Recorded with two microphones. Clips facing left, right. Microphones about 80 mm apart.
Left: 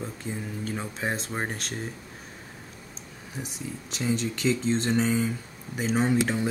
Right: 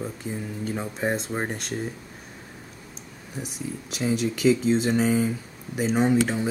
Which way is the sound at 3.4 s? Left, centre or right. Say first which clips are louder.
Right 4 dB; centre.